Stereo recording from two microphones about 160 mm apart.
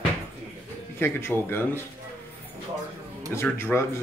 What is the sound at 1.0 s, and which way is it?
Speech, 15° left (ahead or behind).